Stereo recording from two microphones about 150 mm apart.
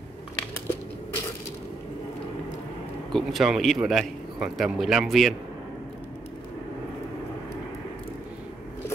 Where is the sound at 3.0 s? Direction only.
Centre (ahead or behind).